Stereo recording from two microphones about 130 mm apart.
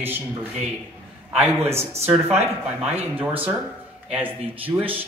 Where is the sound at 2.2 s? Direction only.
55° right (ahead or behind).